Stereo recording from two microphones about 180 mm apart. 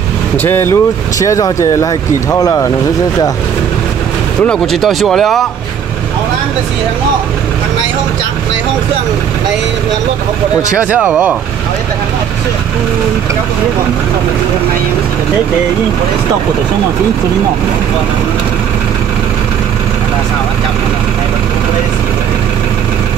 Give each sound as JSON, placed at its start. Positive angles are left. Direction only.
{"t": 0.4, "sound": "speech", "side_deg": 10}
{"t": 4.5, "sound": "speech", "side_deg": 0}
{"t": 10.9, "sound": "speech", "side_deg": -10}